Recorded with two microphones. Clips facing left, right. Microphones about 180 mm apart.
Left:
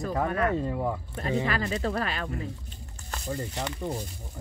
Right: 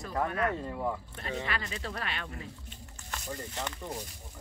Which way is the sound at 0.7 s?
15° left (ahead or behind).